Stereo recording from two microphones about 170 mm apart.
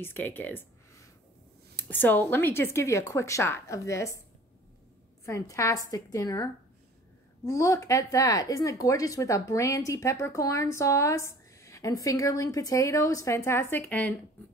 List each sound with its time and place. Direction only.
0.0 s speech: 10° left (ahead or behind)
5.2 s speech: 20° left (ahead or behind)